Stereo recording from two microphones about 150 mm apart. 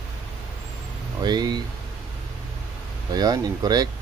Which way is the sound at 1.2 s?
30° right (ahead or behind).